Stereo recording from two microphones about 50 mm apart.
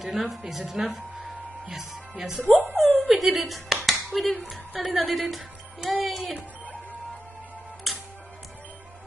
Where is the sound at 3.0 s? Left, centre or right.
Centre.